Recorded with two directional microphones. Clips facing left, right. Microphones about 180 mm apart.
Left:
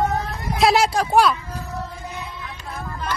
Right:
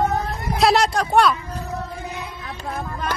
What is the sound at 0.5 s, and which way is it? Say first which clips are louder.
Speech: even; centre (ahead or behind).